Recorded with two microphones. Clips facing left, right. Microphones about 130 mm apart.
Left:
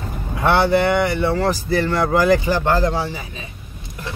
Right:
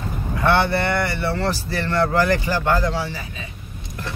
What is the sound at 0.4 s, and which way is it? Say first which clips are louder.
Speech: left 3 dB; 15° left (ahead or behind).